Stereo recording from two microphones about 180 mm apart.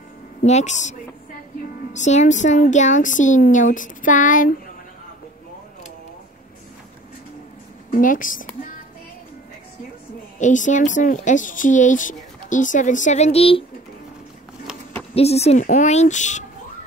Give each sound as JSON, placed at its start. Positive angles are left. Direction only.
{"t": 0.4, "sound": "a woman's voice", "side_deg": 40}
{"t": 7.9, "sound": "a woman's voice", "side_deg": 50}
{"t": 10.4, "sound": "a woman's voice", "side_deg": 45}
{"t": 15.1, "sound": "speech", "side_deg": 35}